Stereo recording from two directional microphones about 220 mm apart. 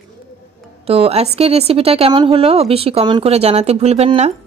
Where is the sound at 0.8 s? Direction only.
25° right (ahead or behind).